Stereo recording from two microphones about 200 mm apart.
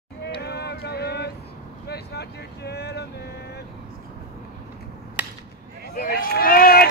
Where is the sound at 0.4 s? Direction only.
55° left (ahead or behind).